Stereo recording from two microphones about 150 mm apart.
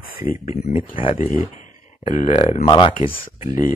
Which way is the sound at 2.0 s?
50° left (ahead or behind).